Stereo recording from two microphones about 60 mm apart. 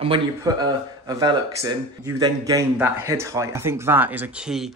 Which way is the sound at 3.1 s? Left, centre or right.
Right.